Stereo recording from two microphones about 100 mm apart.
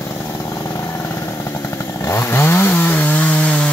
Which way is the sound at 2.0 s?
25° left (ahead or behind).